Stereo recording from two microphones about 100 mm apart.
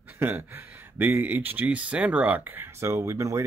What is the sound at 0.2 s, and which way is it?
Speech, 20° right (ahead or behind).